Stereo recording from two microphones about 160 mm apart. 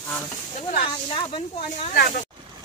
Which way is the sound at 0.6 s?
50° left (ahead or behind).